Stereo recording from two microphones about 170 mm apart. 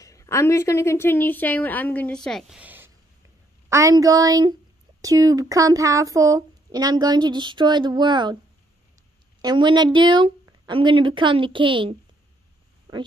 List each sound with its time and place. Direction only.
0.0 s a woman's voice: 20° left (ahead or behind); by 8.4 s 25° right (ahead or behind)
9.4 s speech: 25° right (ahead or behind)
9.9 s a sound: 30° right (ahead or behind)
10.7 s speech: 30° right (ahead or behind)